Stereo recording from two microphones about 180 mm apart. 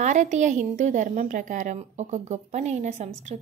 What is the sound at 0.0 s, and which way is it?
Speech, 40° right (ahead or behind).